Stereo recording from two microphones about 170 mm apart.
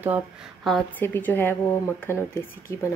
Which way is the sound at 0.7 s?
5° left (ahead or behind).